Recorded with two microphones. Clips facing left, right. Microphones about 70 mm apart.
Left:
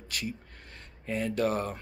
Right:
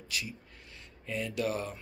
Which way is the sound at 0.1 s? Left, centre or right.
Left.